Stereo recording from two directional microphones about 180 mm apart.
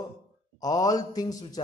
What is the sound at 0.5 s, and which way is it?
A man's voice, 20° left (ahead or behind).